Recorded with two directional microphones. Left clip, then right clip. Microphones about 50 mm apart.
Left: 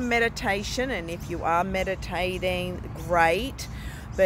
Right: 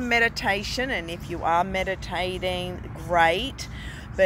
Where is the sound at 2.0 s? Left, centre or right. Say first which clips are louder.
Even; left.